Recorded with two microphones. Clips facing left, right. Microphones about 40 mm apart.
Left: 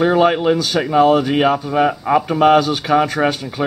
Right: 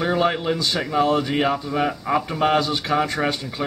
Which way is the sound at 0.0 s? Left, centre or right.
Centre.